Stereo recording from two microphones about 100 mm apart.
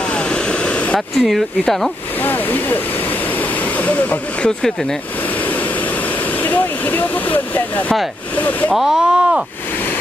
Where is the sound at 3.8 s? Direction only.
15° left (ahead or behind).